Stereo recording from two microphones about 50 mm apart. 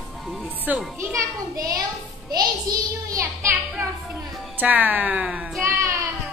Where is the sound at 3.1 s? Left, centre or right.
Right.